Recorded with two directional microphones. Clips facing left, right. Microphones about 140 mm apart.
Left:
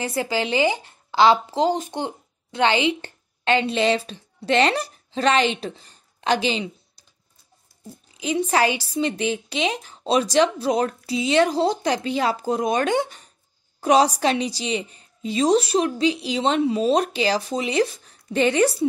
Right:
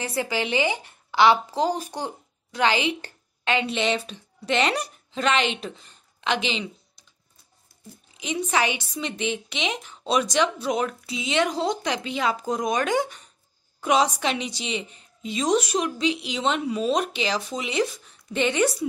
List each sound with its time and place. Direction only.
0.2 s speech: 30° left (ahead or behind)
7.8 s a woman's voice: 30° left (ahead or behind)